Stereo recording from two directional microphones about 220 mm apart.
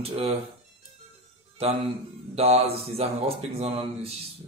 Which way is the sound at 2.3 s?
30° right (ahead or behind).